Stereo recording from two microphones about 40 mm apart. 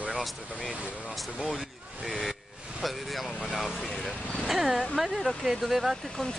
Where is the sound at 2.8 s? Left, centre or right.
Centre.